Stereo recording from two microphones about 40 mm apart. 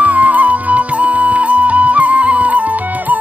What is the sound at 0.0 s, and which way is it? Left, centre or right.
Music, right.